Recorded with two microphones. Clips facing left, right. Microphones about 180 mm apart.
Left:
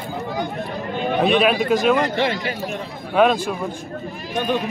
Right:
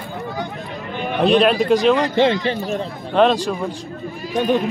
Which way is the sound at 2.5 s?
35° right (ahead or behind).